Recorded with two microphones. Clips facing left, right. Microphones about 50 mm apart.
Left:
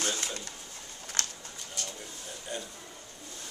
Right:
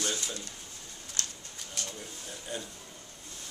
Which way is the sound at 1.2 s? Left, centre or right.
Left.